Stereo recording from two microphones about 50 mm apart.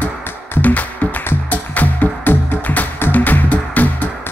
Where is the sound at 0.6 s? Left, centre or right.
Left.